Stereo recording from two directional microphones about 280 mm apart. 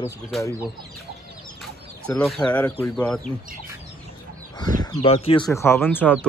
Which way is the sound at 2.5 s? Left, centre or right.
Centre.